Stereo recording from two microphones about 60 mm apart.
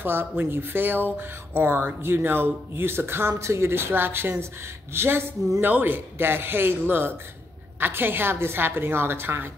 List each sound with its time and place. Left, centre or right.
0.0 s speech: right